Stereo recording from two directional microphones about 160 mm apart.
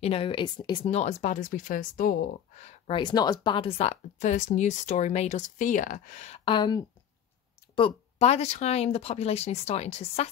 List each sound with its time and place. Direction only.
0.0 s speech: 35° left (ahead or behind)
0.8 s speech: 45° left (ahead or behind)
2.9 s speech: 30° left (ahead or behind)